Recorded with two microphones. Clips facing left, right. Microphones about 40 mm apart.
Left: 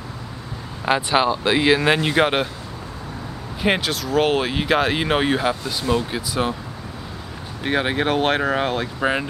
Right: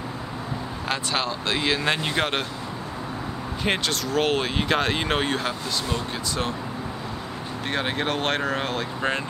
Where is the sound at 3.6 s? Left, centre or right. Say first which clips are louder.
Left 4 dB; centre.